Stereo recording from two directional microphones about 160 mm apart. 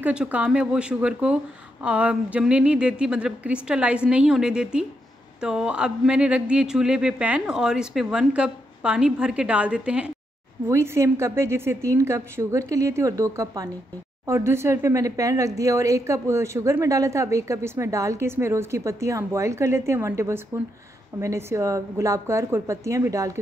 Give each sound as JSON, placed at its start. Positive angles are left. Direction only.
{"t": 0.0, "sound": "speech", "side_deg": -5}
{"t": 10.7, "sound": "a woman's voice", "side_deg": -15}